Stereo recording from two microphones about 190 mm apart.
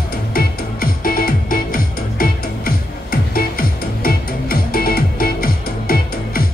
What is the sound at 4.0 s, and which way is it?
Music, 50° left (ahead or behind).